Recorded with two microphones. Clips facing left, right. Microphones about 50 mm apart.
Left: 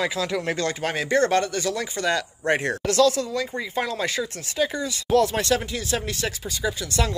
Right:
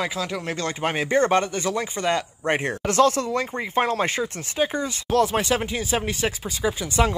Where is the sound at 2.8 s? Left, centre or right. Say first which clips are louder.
Right 2 dB; right.